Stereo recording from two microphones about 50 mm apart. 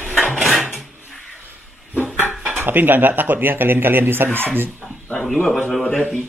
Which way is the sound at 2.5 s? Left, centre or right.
Right.